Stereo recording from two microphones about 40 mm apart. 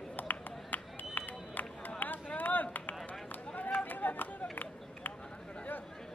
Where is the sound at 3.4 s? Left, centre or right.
Left.